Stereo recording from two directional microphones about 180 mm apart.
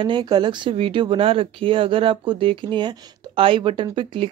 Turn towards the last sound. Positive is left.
turn(degrees=-25)  # may be behind; listen again after turning